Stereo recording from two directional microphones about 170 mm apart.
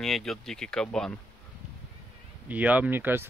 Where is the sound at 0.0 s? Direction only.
Centre (ahead or behind).